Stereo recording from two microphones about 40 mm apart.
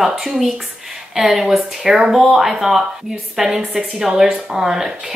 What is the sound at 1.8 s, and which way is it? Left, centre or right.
Speech, centre.